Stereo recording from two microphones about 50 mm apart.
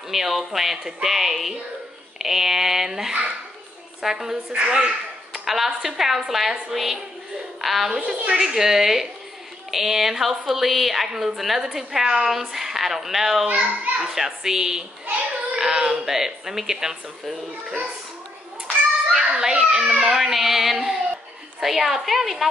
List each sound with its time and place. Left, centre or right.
0.1 s a woman's voice: centre
4.5 s a woman's voice: centre
7.9 s a woman's voice: centre
15.0 s a sound: right
15.6 s speech: centre
19.1 s children playing: centre
19.6 s a woman's voice: centre